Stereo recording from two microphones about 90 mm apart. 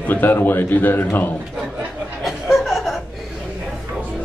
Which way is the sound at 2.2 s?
Centre (ahead or behind).